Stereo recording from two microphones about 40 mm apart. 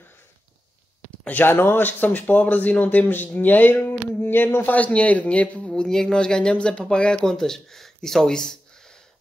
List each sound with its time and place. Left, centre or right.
1.4 s speech: left
1.9 s speech: left
4.6 s speech: left
5.8 s speech: centre
7.2 s speech: centre